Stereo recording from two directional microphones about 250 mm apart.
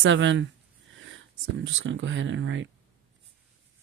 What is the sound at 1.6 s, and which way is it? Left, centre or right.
Speech, right.